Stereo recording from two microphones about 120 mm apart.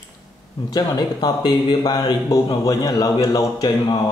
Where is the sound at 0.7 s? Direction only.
35° left (ahead or behind).